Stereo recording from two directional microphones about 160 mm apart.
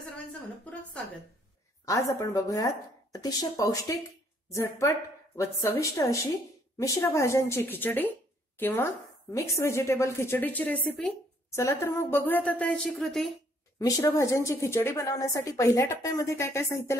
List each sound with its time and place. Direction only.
0.3 s a woman's voice: 10° left (ahead or behind)
1.9 s a woman's voice: 20° left (ahead or behind)
11.5 s a woman's voice: 15° left (ahead or behind); by 13.3 s centre (ahead or behind)
13.7 s a woman's voice: 20° left (ahead or behind)